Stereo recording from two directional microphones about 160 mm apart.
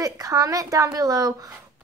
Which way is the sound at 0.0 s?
20° right (ahead or behind).